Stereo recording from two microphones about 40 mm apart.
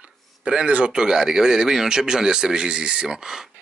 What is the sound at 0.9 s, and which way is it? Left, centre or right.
Speech, centre.